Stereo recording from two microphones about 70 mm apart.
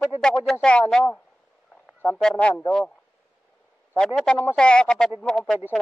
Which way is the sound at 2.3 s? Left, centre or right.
Centre.